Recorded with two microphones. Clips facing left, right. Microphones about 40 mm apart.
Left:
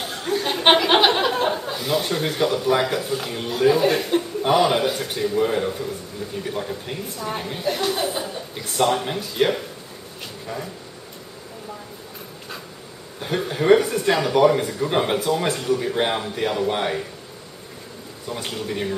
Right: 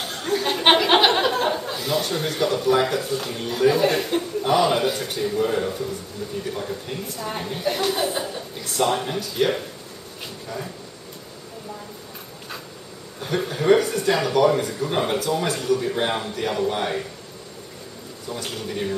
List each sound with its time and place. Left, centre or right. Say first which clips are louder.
0.0 s speech: even; centre
4.4 s a man's voice: left 1 dB; centre
9.0 s a man's voice: left 1 dB; centre
13.5 s a man's voice: left 2 dB; centre
16.6 s a man's voice: left 1 dB; left
18.3 s a man's voice: left 2 dB; centre